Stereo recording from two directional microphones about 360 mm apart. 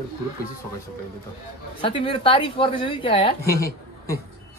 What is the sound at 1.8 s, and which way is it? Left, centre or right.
A woman's voice, centre.